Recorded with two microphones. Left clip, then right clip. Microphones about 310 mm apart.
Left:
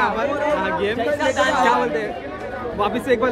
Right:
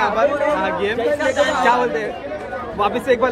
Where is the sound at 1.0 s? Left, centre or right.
Left.